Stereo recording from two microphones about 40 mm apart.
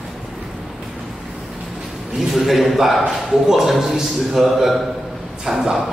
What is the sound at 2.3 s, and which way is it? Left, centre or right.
A man's voice, centre.